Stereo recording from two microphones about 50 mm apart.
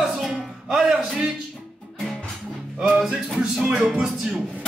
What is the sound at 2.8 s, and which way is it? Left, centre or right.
Speech, centre.